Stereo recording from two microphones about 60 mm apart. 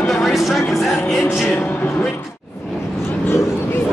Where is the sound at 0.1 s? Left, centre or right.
Centre.